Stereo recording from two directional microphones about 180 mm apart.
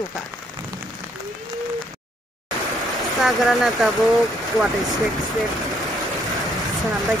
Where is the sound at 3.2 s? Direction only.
Centre (ahead or behind).